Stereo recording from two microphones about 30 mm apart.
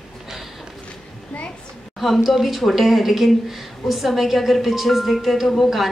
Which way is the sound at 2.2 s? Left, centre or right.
Centre.